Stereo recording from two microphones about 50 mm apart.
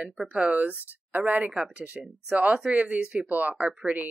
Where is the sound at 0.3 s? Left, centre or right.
Right.